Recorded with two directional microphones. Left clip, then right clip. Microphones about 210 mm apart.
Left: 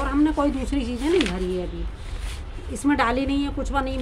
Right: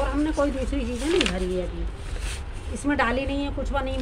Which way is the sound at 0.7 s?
40° left (ahead or behind).